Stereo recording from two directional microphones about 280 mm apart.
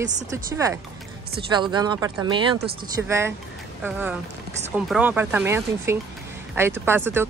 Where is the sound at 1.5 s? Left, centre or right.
Centre.